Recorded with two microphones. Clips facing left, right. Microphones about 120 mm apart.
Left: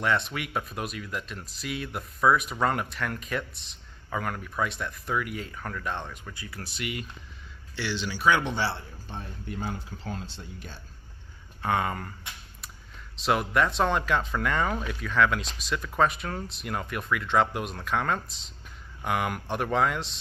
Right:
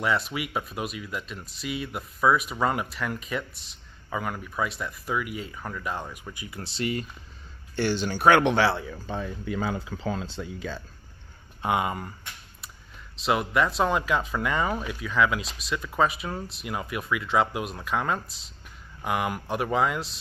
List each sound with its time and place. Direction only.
0.0 s speech: 5° right (ahead or behind); by 7.1 s 35° right (ahead or behind)
7.7 s speech: 45° right (ahead or behind); by 9.3 s 90° right
10.4 s speech: 90° right
11.6 s speech: 15° right (ahead or behind)